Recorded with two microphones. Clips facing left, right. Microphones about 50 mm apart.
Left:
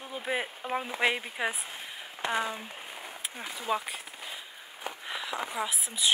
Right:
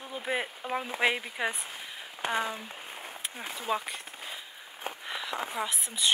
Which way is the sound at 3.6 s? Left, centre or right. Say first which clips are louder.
Left 1 dB; centre.